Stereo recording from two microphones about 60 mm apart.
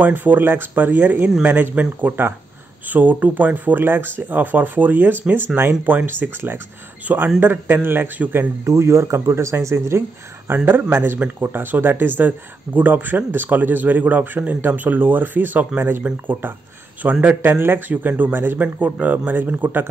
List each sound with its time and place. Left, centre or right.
0.0 s speech: right
8.6 s speech: right
10.5 s speech: right
17.4 s speech: right